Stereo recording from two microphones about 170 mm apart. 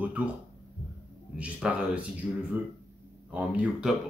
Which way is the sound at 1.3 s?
5° right (ahead or behind).